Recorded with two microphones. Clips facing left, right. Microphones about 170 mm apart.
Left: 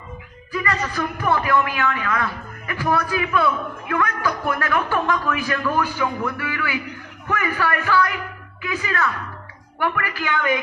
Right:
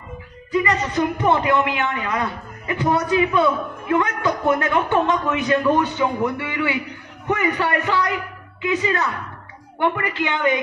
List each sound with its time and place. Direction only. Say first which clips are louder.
0.5 s a man's voice: right 4 dB; 20° right (ahead or behind)